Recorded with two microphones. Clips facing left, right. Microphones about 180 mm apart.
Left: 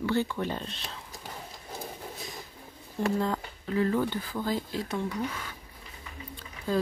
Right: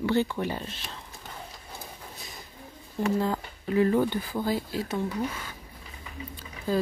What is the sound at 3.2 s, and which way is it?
Speech, 10° right (ahead or behind).